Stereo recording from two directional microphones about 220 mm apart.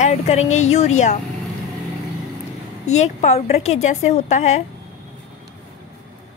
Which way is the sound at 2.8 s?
30° left (ahead or behind).